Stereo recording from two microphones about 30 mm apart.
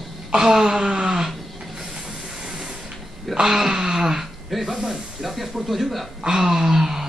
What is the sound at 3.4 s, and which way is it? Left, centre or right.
Wail, centre.